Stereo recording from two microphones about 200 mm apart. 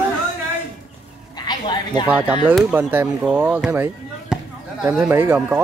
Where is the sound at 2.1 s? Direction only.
5° right (ahead or behind).